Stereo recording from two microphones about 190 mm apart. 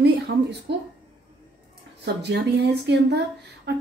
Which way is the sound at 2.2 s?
65° right (ahead or behind).